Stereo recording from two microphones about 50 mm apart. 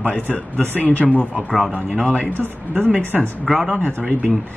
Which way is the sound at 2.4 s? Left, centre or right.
Right.